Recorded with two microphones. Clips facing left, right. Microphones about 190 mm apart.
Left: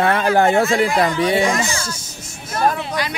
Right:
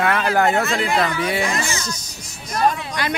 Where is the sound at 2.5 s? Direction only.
5° left (ahead or behind).